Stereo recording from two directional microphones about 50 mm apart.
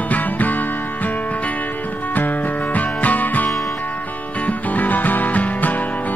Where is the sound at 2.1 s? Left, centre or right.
Left.